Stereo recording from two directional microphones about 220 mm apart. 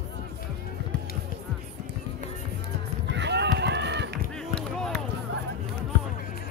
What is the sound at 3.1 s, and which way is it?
Run, 50° right (ahead or behind).